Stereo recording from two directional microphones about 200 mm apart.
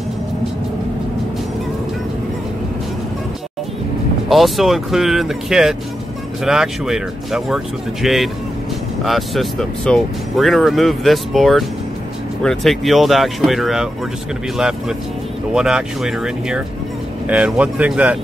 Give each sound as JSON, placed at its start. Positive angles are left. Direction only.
{"t": 4.3, "sound": "speech", "side_deg": 0}